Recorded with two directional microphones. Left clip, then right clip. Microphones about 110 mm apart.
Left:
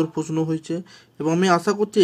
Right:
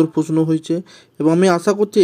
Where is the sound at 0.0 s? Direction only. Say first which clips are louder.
Right 7 dB; 45° right (ahead or behind).